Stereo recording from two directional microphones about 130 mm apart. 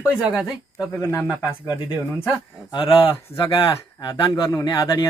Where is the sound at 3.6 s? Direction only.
35° left (ahead or behind).